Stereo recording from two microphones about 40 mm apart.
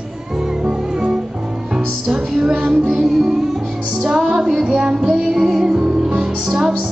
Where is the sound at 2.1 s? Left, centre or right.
Centre.